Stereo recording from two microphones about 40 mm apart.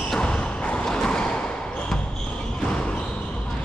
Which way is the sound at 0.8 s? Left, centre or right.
Centre.